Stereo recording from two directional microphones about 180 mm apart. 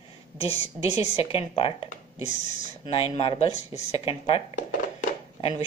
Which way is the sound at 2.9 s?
35° left (ahead or behind).